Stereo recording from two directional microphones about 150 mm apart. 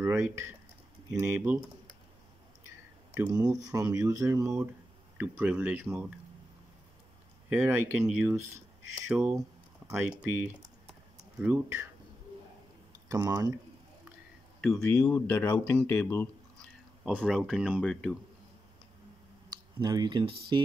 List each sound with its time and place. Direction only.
0.0 s speech: 20° right (ahead or behind)
3.3 s speech: 25° right (ahead or behind)
7.4 s speech: 15° right (ahead or behind)
13.1 s speech: 25° right (ahead or behind)
14.6 s speech: 5° left (ahead or behind)
19.5 s speech: 25° right (ahead or behind)